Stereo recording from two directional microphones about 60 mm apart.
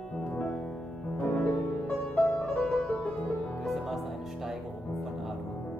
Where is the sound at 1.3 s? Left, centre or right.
Left.